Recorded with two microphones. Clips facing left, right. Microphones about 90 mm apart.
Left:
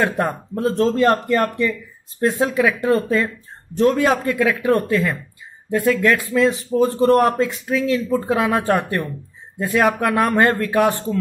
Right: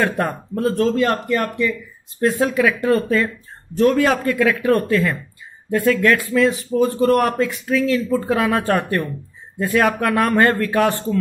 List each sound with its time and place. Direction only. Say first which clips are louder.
0.0 s speech: even; 20° left (ahead or behind)
0.8 s speech: left 2 dB; 35° left (ahead or behind)
2.4 s speech: even; 20° left (ahead or behind)
6.8 s speech: left 1 dB; 30° left (ahead or behind)